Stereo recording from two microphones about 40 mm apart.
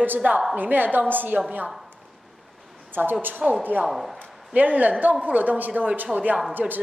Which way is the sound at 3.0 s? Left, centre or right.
Right.